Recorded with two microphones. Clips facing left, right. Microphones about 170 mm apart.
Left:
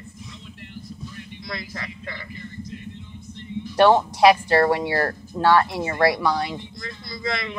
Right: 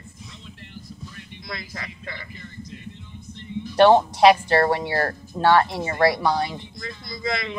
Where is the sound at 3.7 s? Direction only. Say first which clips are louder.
Right 2 dB; 25° right (ahead or behind).